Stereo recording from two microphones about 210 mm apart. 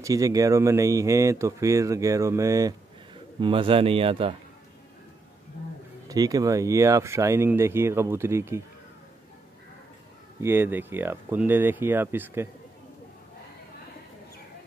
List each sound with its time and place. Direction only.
0.0 s a man's voice: 15° right (ahead or behind)
6.0 s speech: 15° right (ahead or behind)
10.4 s speech: 10° right (ahead or behind)